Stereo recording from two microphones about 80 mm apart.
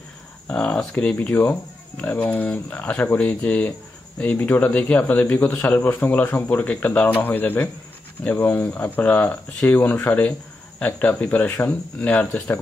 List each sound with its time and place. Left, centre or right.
0.5 s speech: centre